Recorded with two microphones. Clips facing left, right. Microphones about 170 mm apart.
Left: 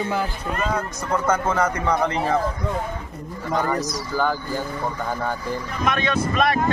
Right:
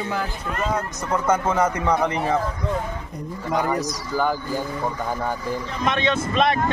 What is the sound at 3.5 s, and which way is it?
Speech, 10° right (ahead or behind).